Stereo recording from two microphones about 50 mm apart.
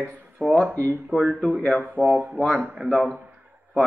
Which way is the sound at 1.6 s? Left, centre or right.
Left.